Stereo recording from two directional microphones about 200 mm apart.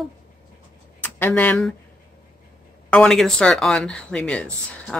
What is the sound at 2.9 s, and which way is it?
Speech, 5° left (ahead or behind).